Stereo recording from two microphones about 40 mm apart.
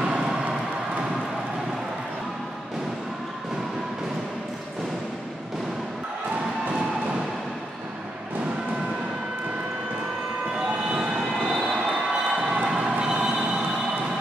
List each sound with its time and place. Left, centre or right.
0.0 s vehicle: centre
10.7 s train: right
11.4 s vehicle: centre